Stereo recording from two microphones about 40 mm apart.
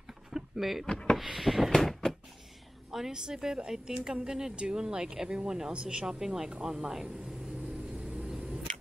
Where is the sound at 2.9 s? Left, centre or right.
Centre.